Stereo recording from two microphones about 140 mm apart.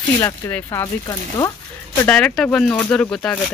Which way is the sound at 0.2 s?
15° left (ahead or behind).